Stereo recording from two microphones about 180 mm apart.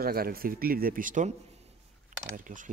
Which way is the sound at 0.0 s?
55° right (ahead or behind).